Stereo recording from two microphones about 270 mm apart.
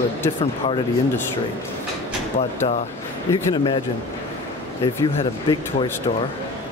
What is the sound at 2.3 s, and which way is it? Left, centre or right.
Speech, left.